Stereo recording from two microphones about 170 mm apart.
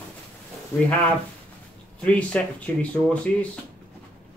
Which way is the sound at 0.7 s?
15° left (ahead or behind).